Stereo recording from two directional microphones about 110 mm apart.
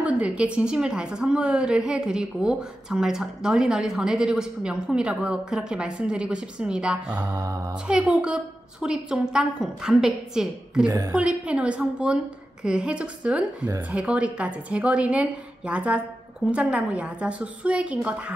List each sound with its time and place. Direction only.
0.0 s a woman's voice: 10° right (ahead or behind)
7.1 s mantra: 35° right (ahead or behind)
7.9 s a woman's voice: 10° right (ahead or behind)
10.9 s mantra: 35° right (ahead or behind)
11.1 s a woman's voice: 10° right (ahead or behind)